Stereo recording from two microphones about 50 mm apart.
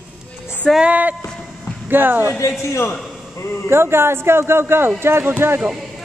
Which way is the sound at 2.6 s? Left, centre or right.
Left.